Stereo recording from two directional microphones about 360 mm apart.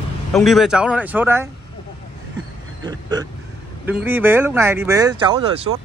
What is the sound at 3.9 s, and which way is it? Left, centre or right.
Speech, centre.